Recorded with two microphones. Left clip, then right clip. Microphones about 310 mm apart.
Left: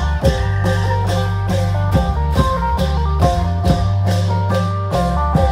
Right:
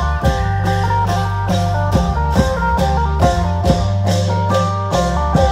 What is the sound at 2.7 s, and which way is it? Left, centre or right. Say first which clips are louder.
Music: right 5 dB; right.